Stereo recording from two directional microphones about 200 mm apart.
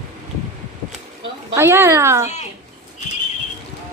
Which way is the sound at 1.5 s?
15° right (ahead or behind).